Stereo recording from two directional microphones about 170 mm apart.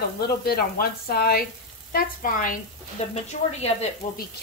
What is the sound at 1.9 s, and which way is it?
Speech, 55° left (ahead or behind).